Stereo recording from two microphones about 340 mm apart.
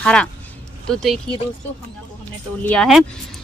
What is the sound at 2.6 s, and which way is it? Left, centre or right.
Speech, centre.